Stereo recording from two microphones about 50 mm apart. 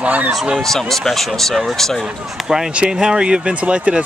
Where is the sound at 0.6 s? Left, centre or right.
Centre.